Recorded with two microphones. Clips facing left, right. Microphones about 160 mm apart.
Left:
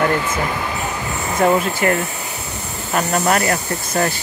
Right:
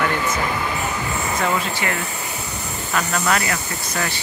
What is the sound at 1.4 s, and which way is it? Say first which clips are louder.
Speech: left 10 dB; 45° left (ahead or behind).